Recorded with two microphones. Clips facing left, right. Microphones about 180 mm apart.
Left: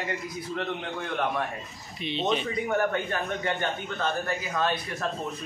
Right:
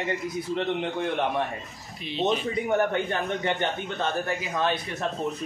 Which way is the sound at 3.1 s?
20° right (ahead or behind).